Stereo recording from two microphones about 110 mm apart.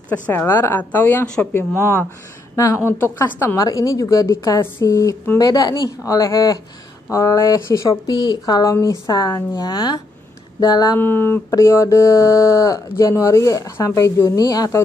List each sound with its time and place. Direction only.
0.1 s a woman's voice: 15° left (ahead or behind)
1.8 s a woman's voice: 25° left (ahead or behind)
8.1 s speech: 45° left (ahead or behind)
11.0 s speech: 20° left (ahead or behind)